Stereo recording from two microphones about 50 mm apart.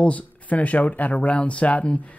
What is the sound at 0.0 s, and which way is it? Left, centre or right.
Speech, left.